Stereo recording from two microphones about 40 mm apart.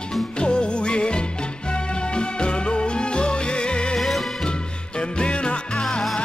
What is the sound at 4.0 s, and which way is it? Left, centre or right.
Music, centre.